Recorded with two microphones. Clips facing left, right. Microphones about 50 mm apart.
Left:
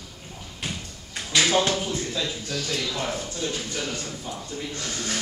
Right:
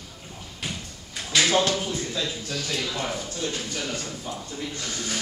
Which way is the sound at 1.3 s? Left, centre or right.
Centre.